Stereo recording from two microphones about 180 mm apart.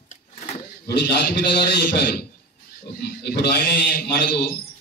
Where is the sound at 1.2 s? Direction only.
65° left (ahead or behind).